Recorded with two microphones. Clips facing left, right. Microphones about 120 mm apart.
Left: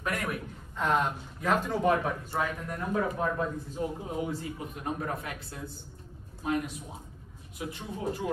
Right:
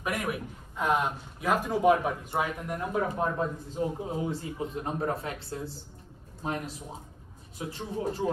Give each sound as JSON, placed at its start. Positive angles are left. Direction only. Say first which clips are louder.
{"t": 0.0, "sound": "a man's voice", "louder": "right 1 dB", "side_deg": -10}